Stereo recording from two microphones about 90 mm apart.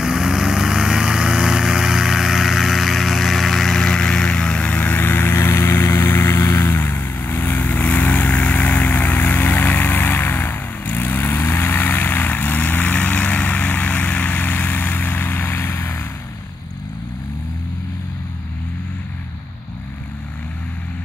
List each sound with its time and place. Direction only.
0.0 s vehicle: 5° right (ahead or behind); by 16.0 s 25° left (ahead or behind)